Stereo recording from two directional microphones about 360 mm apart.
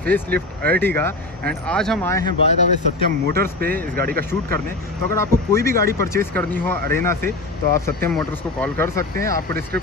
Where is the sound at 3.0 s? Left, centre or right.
Right.